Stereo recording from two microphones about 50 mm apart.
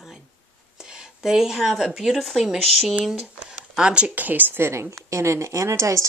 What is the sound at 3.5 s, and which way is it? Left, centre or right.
Speech, centre.